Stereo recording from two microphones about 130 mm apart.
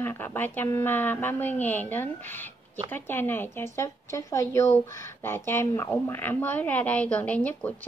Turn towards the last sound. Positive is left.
turn(degrees=10)  # may be behind; listen again after turning